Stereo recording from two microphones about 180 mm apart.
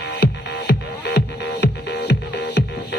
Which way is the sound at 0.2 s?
65° left (ahead or behind).